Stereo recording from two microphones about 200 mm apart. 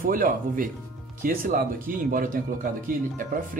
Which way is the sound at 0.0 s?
45° right (ahead or behind).